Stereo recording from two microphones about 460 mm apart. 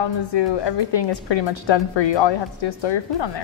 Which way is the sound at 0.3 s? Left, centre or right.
Left.